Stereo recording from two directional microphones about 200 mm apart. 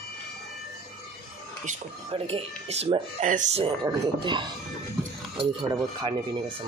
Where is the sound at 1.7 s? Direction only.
30° right (ahead or behind).